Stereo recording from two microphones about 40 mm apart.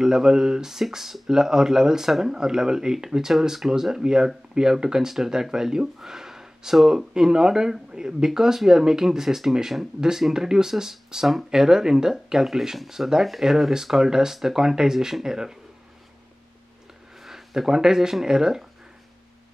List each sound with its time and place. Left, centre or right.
0.0 s speech: centre
17.2 s a sound: centre
18.2 s speech: centre